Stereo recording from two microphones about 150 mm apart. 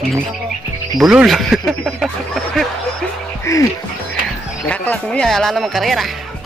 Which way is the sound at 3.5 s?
20° left (ahead or behind).